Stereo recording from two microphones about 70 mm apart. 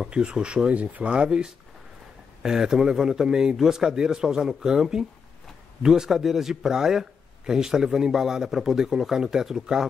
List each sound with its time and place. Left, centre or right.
0.0 s a man's voice: centre